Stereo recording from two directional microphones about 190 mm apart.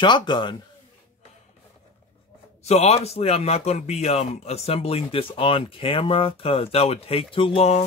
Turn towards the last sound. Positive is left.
turn(degrees=35)  # may be behind; listen again after turning